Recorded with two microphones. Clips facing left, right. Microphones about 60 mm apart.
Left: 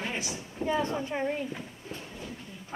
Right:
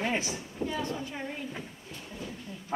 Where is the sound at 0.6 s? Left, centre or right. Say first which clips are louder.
Left 5 dB; left.